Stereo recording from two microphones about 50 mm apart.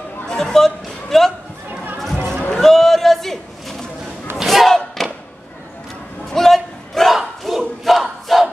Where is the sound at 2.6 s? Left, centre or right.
Centre.